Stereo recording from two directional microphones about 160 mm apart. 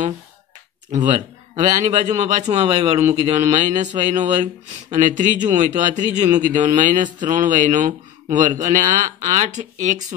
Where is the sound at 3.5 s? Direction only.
50° right (ahead or behind).